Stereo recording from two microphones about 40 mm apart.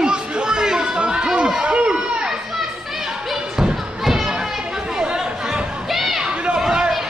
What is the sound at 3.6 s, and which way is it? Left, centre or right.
Thump, centre.